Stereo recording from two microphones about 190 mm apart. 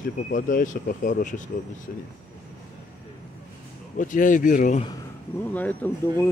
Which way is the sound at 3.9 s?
45° left (ahead or behind).